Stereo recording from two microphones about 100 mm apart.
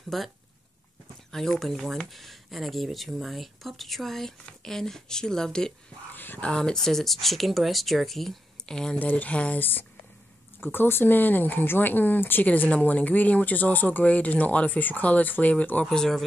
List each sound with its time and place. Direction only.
0.1 s speech: 5° left (ahead or behind)
1.3 s speech: 5° left (ahead or behind)
6.1 s a sound: 20° left (ahead or behind)
6.5 s speech: 5° left (ahead or behind)